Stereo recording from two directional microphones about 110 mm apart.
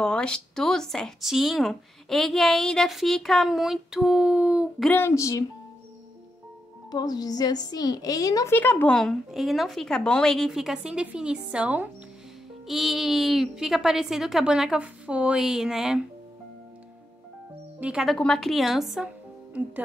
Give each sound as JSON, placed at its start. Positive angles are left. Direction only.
{"t": 0.0, "sound": "speech", "side_deg": 10}
{"t": 5.0, "sound": "speech", "side_deg": 30}
{"t": 6.9, "sound": "a woman's voice", "side_deg": 35}
{"t": 8.5, "sound": "speech", "side_deg": 15}
{"t": 8.9, "sound": "speech", "side_deg": 0}
{"t": 17.7, "sound": "speech", "side_deg": -10}
{"t": 18.0, "sound": "speech", "side_deg": 5}